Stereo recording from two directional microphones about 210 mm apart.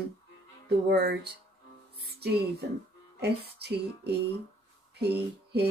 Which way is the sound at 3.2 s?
50° right (ahead or behind).